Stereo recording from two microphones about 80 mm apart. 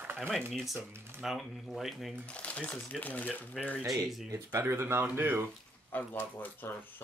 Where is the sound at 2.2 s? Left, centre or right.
Centre.